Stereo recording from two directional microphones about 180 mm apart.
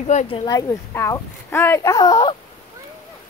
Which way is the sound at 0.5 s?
20° left (ahead or behind).